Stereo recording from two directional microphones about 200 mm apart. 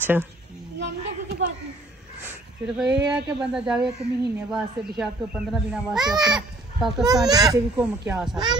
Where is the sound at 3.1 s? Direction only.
5° right (ahead or behind).